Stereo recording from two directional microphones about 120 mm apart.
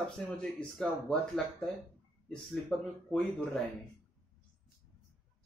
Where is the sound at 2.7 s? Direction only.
5° left (ahead or behind).